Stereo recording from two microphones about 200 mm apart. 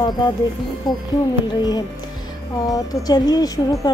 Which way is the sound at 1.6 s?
20° left (ahead or behind).